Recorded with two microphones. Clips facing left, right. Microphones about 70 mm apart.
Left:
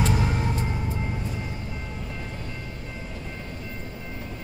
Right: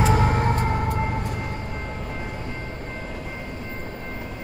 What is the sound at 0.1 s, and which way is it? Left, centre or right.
Vehicle, right.